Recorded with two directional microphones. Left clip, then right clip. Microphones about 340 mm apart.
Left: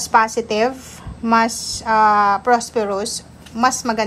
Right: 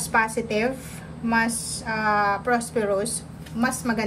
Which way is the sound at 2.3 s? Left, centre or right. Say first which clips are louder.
Left 7 dB; centre.